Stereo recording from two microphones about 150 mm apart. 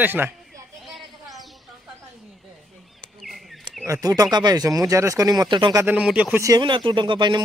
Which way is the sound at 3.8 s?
25° right (ahead or behind).